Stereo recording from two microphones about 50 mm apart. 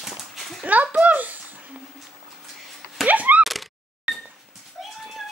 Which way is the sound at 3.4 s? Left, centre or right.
Centre.